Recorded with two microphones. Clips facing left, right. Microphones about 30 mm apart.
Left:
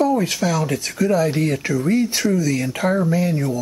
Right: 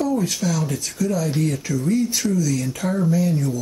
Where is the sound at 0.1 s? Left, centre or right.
Left.